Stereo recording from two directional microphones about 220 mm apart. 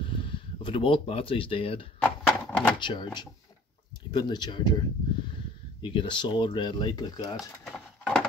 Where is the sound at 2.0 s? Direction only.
5° left (ahead or behind).